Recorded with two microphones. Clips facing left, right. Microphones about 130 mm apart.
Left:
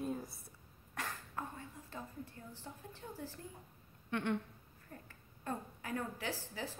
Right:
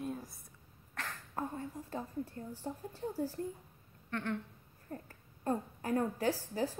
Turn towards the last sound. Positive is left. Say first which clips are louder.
# right 9 dB
turn(degrees=-45)  # may be behind; listen again after turning